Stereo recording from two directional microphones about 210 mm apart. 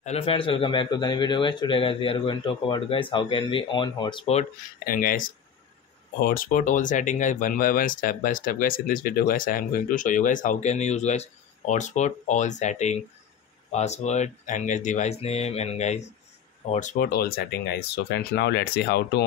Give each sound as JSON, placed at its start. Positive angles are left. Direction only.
{"t": 0.0, "sound": "a man's voice", "side_deg": 30}
{"t": 4.8, "sound": "speech", "side_deg": 40}